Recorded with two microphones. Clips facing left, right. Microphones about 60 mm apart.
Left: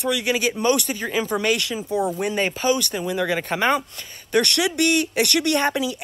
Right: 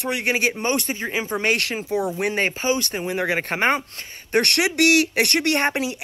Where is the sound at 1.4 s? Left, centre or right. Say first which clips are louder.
Even; right.